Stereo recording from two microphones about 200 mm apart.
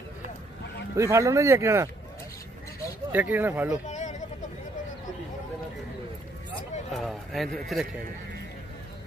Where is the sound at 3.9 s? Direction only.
40° left (ahead or behind).